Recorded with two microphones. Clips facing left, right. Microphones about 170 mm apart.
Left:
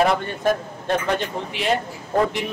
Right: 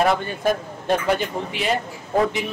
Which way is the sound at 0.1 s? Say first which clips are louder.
Even; centre (ahead or behind).